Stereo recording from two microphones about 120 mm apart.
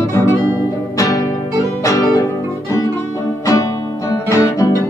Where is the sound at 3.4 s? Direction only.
30° left (ahead or behind).